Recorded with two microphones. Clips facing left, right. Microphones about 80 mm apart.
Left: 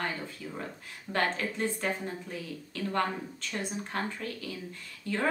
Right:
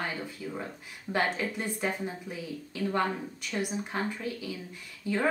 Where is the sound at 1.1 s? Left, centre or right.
Centre.